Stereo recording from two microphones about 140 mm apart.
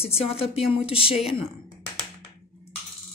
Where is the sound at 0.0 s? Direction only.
45° left (ahead or behind).